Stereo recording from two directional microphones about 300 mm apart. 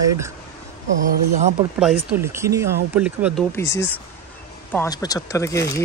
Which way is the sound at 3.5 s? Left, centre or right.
Centre.